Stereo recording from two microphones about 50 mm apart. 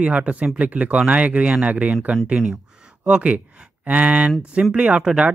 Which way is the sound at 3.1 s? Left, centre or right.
Centre.